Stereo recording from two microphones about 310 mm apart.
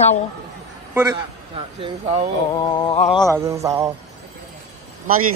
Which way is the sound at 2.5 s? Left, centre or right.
Centre.